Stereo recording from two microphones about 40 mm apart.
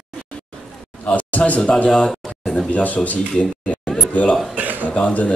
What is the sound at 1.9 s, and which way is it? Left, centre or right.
Speech, centre.